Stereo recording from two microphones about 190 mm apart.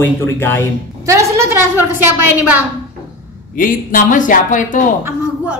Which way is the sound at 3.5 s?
45° left (ahead or behind).